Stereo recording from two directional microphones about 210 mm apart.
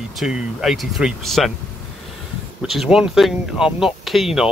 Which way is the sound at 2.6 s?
Centre (ahead or behind).